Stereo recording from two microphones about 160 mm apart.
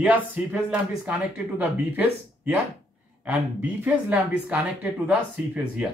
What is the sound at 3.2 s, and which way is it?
Speech, 10° right (ahead or behind).